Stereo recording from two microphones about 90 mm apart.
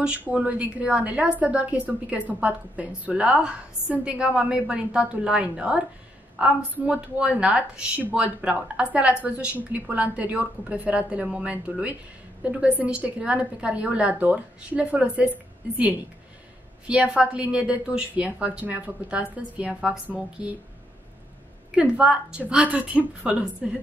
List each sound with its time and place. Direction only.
0.3 s a woman's voice: 15° right (ahead or behind)
16.8 s a woman's voice: 10° right (ahead or behind)
21.7 s a woman's voice: 10° right (ahead or behind)